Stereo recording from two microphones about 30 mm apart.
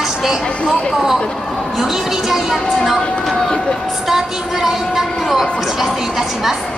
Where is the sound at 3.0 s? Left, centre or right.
Centre.